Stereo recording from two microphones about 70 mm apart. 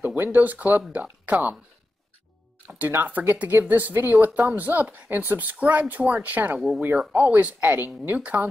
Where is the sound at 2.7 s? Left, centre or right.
Right.